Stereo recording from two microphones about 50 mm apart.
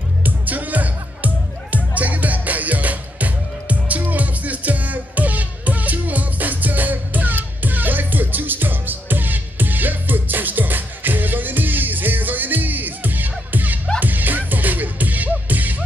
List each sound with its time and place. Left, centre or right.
0.2 s music: right